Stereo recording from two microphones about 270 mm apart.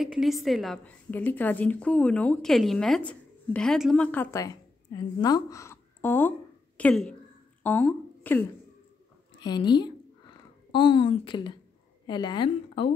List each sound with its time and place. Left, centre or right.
0.0 s a woman's voice: centre